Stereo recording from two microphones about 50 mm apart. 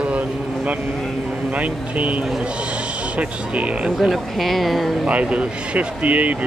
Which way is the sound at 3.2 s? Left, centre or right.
Right.